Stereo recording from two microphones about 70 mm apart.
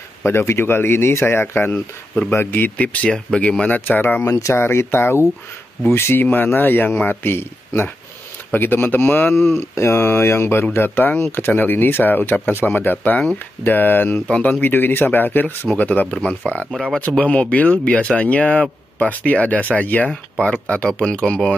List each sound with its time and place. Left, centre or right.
0.2 s speech: left
4.2 s speech: left
4.6 s speech: left
6.2 s speech: left
20.1 s speech: centre